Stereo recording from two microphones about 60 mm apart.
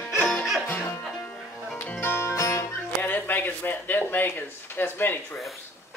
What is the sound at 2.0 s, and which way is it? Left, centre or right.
Music, left.